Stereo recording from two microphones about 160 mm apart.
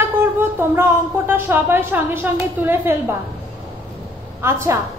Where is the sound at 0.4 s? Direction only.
15° right (ahead or behind).